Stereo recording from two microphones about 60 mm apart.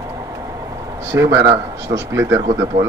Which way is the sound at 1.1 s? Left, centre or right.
Right.